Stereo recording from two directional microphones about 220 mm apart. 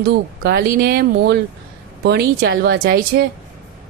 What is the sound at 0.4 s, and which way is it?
A woman's voice, 45° right (ahead or behind).